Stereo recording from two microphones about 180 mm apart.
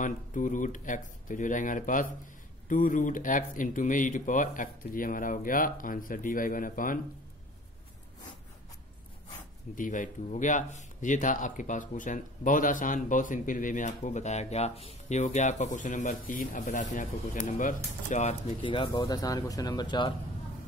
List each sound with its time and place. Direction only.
0.0 s a man's voice: 45° left (ahead or behind)
9.8 s a man's voice: 45° left (ahead or behind)
18.6 s speech: 30° left (ahead or behind)